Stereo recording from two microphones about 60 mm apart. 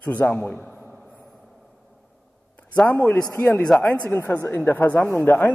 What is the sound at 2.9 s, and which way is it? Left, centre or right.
Speech, left.